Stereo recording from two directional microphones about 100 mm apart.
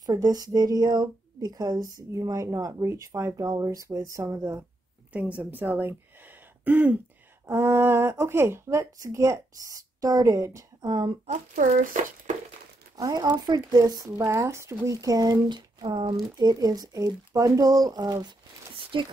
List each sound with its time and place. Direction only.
0.0 s speech: 40° right (ahead or behind)
5.1 s a woman's voice: 15° right (ahead or behind); by 11.1 s 40° right (ahead or behind)
12.9 s speech: 35° right (ahead or behind)
14.1 s speech: 25° right (ahead or behind); by 16.2 s 50° right (ahead or behind)
16.3 s speech: 40° right (ahead or behind)